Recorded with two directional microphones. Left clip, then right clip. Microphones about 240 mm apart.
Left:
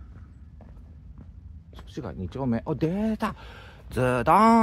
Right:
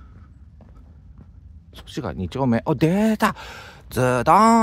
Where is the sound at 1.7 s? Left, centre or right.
Right.